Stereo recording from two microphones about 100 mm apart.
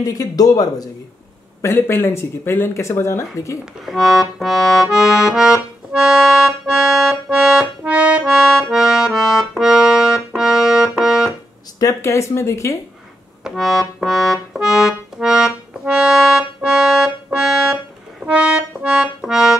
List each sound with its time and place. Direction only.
0.0 s speech: 40° left (ahead or behind)
1.6 s speech: 25° left (ahead or behind)
3.8 s accordion: centre (ahead or behind)
11.8 s speech: 30° left (ahead or behind)
13.4 s accordion: centre (ahead or behind)